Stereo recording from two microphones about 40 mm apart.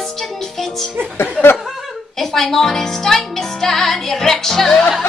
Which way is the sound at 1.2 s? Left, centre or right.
Left.